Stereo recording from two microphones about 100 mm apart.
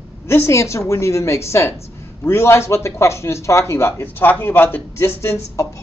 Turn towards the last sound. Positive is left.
turn(degrees=25)  # may be behind; listen again after turning